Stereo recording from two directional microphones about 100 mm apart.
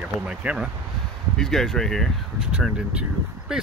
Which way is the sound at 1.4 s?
5° left (ahead or behind).